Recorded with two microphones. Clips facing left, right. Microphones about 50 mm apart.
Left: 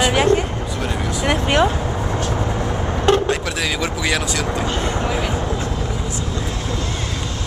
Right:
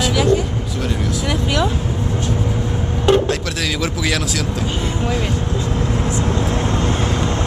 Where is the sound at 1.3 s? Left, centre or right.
Left.